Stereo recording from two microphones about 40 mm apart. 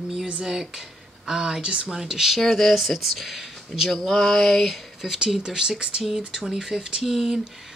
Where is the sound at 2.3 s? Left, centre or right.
Centre.